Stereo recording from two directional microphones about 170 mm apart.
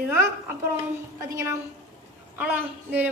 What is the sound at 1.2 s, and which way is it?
A woman's voice, 15° right (ahead or behind).